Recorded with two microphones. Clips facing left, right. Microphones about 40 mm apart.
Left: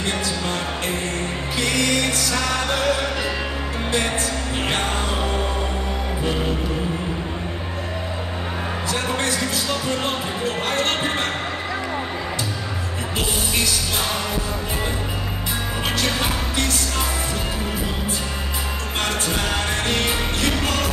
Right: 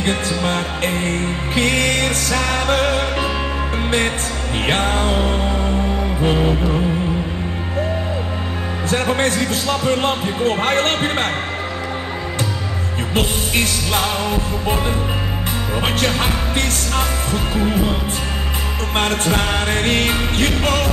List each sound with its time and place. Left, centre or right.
0.0 s music: right
4.6 s music: right
8.8 s speech: right
13.1 s music: right
15.8 s music: right
17.3 s speech: right
18.9 s music: right